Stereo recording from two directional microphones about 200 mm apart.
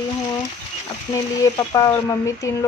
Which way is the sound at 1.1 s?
15° left (ahead or behind).